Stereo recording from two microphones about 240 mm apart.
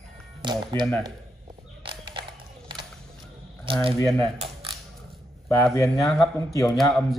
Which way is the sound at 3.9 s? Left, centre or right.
Centre.